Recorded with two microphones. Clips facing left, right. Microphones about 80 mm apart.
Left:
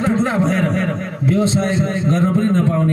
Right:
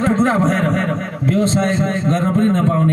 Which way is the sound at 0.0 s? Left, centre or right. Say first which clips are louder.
Right 2 dB; right.